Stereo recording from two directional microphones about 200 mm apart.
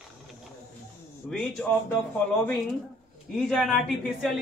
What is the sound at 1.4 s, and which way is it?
Speech, 5° left (ahead or behind).